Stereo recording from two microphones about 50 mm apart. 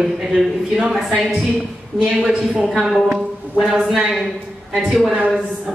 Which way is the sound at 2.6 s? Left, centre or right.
Centre.